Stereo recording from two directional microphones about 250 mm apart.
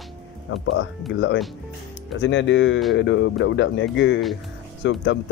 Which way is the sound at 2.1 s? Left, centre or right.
Left.